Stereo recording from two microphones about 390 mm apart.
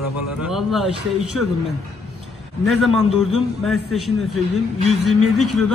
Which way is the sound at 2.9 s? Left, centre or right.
Centre.